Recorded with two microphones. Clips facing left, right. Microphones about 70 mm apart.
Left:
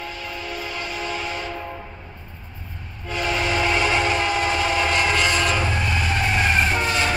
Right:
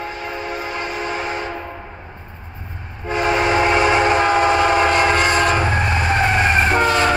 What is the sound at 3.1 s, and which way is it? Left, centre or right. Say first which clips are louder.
Train: right 6 dB; right.